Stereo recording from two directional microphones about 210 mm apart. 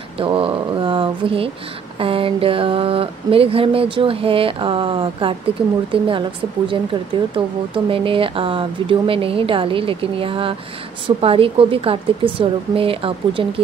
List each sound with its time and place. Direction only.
0.2 s speech: 25° right (ahead or behind)
6.7 s speech: 25° right (ahead or behind)